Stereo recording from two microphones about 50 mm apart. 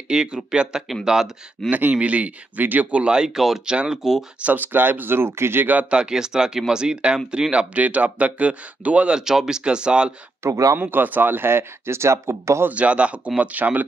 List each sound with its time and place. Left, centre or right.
0.1 s speech: centre
1.7 s speech: right
2.9 s speech: centre
3.3 s speech: centre
3.6 s speech: centre
4.4 s speech: right
4.7 s speech: right
5.9 s speech: centre
9.1 s speech: centre
10.4 s speech: right
10.8 s speech: right
12.7 s speech: right